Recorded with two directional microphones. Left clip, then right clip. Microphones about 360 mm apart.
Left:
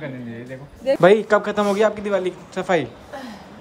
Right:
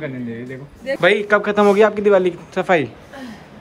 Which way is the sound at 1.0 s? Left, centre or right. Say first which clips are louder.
Even; centre.